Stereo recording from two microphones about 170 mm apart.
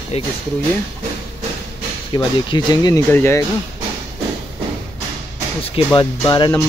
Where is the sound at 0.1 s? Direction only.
40° left (ahead or behind).